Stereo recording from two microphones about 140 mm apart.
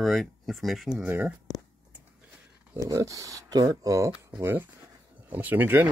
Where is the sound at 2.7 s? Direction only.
20° right (ahead or behind).